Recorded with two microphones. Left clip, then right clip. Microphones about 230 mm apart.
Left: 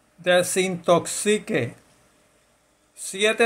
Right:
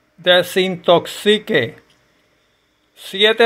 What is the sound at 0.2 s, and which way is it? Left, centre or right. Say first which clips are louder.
Speech: right 6 dB; centre.